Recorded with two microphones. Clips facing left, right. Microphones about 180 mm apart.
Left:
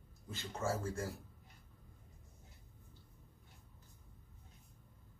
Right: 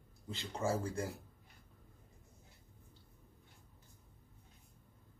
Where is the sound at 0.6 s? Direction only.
15° right (ahead or behind).